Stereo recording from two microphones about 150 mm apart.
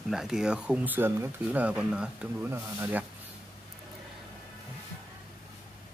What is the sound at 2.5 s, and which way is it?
Speech, 15° right (ahead or behind).